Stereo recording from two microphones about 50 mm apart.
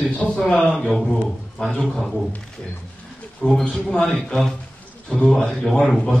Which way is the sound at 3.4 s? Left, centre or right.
Left.